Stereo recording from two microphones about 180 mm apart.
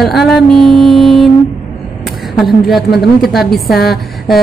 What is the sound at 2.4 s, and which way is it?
Speech, centre (ahead or behind).